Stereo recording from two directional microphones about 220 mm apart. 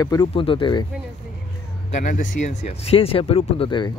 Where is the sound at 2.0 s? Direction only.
35° left (ahead or behind).